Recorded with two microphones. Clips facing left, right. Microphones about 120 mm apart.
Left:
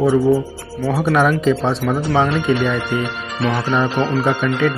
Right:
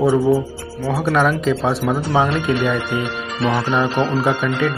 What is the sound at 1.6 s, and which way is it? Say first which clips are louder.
Speech: even; 10° right (ahead or behind).